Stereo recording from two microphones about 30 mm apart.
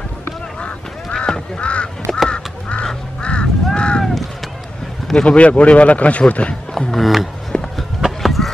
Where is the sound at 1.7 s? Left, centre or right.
Left.